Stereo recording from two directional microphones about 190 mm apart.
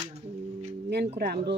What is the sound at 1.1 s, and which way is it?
Speech, 60° right (ahead or behind).